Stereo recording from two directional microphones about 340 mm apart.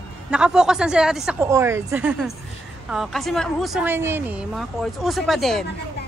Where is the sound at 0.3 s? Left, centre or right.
Centre.